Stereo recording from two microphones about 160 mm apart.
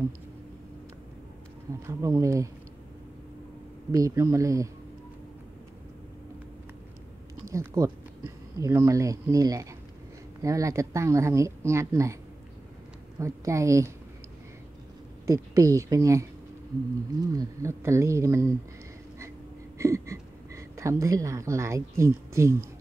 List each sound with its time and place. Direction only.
1.9 s speech: 20° right (ahead or behind)
3.9 s speech: 20° right (ahead or behind)
7.4 s speech: 20° right (ahead or behind)
13.2 s speech: 20° right (ahead or behind)
15.2 s speech: 20° right (ahead or behind)
17.3 s speech: 20° right (ahead or behind)
19.8 s a woman's voice: 20° right (ahead or behind)